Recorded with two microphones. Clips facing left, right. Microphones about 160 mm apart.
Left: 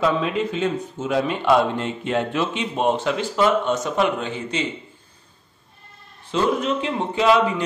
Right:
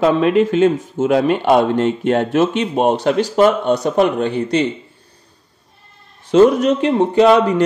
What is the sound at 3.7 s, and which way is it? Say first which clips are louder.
Speech: right 7 dB; 35° right (ahead or behind).